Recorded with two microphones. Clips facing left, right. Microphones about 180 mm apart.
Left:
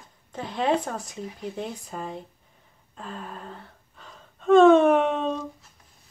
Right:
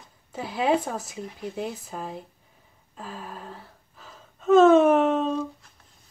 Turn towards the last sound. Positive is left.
turn(degrees=0)  # may be behind; listen again after turning